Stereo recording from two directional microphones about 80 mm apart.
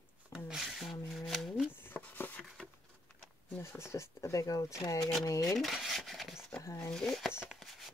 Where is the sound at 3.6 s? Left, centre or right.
Left.